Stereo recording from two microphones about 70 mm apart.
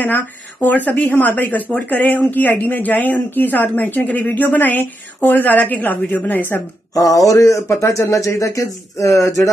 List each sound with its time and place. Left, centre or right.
0.0 s speech: left
7.0 s speech: left